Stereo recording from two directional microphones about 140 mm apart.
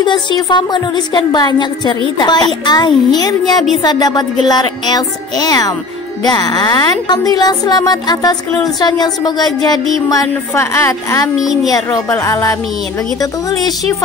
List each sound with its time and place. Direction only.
0.0 s a woman's voice: 30° left (ahead or behind)
11.3 s a child's voice: 5° right (ahead or behind)
11.7 s speech: 20° left (ahead or behind)